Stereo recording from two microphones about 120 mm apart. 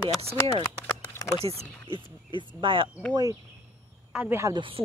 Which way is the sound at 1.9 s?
45° right (ahead or behind).